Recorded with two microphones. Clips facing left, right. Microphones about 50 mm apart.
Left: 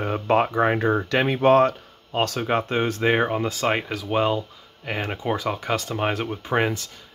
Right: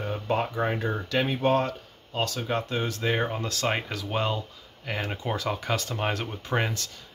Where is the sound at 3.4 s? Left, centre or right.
Centre.